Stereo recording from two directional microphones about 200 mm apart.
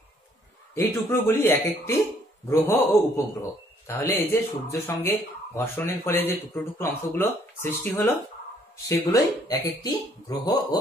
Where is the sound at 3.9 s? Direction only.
10° left (ahead or behind).